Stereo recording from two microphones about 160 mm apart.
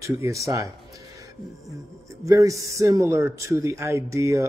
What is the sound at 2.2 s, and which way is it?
A man's voice, 20° right (ahead or behind).